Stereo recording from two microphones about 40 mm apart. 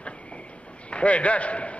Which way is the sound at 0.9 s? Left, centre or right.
Left.